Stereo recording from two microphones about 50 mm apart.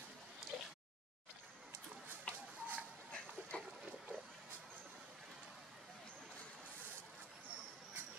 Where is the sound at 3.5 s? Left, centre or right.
Left.